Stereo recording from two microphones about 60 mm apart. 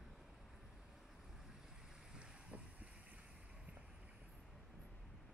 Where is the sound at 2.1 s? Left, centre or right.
Right.